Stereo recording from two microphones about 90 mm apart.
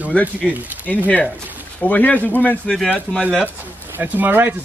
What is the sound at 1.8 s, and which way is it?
A man's voice, 15° left (ahead or behind).